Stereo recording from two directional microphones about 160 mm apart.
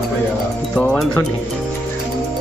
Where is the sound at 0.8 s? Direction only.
10° left (ahead or behind).